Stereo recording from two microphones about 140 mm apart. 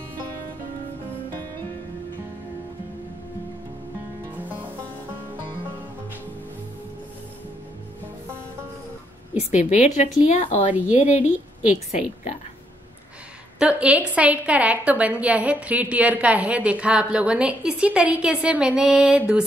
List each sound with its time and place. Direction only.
9.4 s a woman's voice: 60° left (ahead or behind)
13.6 s a woman's voice: 10° right (ahead or behind)